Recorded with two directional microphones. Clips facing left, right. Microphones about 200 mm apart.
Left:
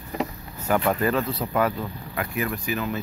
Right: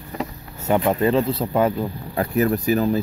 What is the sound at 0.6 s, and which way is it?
Speech, 20° right (ahead or behind).